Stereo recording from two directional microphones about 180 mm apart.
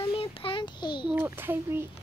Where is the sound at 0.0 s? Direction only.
30° left (ahead or behind).